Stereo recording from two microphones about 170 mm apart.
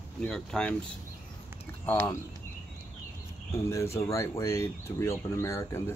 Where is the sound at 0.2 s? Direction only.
5° left (ahead or behind).